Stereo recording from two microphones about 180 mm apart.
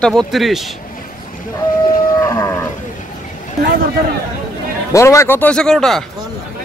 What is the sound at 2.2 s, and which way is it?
Moo, 15° left (ahead or behind).